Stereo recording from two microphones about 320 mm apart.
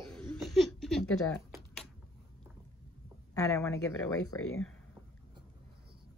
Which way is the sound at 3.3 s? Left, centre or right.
Centre.